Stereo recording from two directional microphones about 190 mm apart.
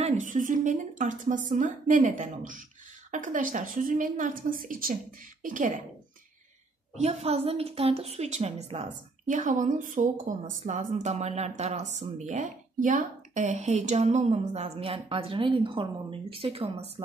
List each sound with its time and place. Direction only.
0.0 s a woman's voice: 40° right (ahead or behind)
7.0 s a woman's voice: 35° right (ahead or behind)